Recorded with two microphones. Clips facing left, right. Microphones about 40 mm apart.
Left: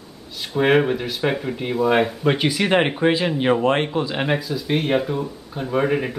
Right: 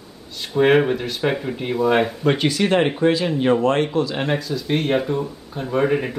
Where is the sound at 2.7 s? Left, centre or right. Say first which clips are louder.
Even; left.